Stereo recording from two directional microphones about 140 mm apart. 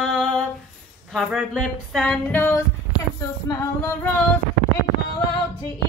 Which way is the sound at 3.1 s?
20° left (ahead or behind).